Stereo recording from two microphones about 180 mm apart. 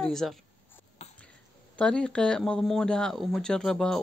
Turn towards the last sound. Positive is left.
turn(degrees=5)  # may be behind; listen again after turning